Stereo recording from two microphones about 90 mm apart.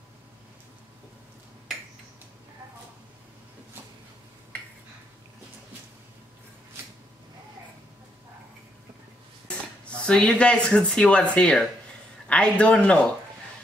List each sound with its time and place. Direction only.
9.8 s speech: 10° left (ahead or behind)